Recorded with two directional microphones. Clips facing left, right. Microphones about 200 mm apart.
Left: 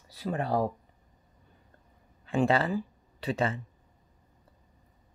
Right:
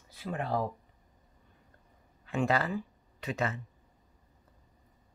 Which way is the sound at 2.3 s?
30° left (ahead or behind).